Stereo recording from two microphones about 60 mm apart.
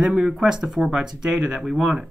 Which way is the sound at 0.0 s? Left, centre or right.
Centre.